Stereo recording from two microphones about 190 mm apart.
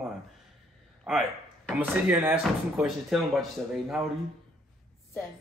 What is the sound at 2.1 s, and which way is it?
Speech, 10° right (ahead or behind).